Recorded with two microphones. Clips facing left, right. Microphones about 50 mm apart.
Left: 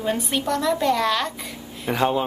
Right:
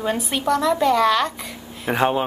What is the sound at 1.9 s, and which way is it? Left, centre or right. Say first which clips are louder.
Speech: right 2 dB; right.